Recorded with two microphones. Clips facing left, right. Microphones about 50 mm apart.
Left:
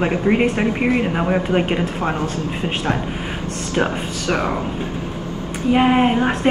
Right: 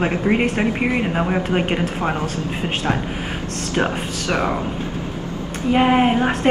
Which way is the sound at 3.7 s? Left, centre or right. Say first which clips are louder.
Left 1 dB; right.